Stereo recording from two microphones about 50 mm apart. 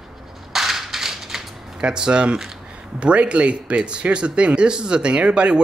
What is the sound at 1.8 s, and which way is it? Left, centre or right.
A man's voice, centre.